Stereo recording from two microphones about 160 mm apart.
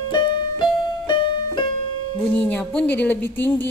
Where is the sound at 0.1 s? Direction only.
30° left (ahead or behind).